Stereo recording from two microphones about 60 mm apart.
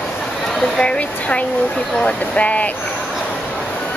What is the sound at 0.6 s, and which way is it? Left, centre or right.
Speech, centre.